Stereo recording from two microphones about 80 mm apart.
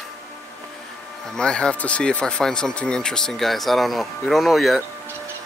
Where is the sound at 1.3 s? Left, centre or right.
Centre.